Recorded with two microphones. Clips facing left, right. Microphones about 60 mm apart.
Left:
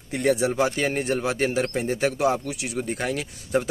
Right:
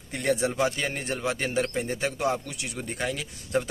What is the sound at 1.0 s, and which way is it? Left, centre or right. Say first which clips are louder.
Speech: left 7 dB; left.